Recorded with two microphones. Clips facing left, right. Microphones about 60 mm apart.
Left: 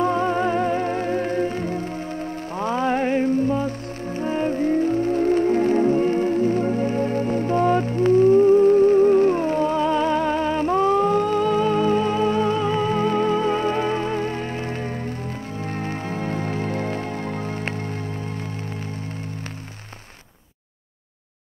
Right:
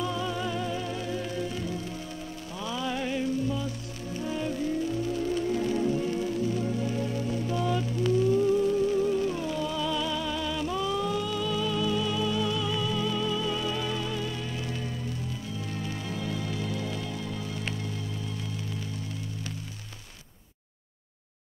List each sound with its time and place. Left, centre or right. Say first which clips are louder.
0.0 s music: left 10 dB; left